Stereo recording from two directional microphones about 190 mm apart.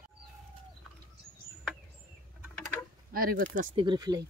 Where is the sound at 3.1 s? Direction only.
50° right (ahead or behind).